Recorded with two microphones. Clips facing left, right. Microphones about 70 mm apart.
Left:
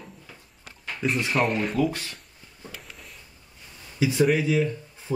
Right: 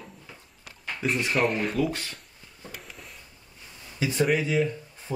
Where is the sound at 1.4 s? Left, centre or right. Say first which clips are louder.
Left 1 dB; centre.